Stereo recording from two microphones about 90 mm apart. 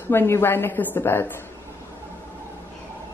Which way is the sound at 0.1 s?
25° left (ahead or behind).